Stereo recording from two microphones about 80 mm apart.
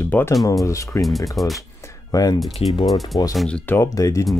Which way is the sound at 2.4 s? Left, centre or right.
Centre.